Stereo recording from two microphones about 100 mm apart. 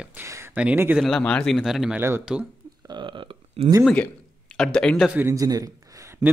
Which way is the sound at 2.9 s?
55° right (ahead or behind).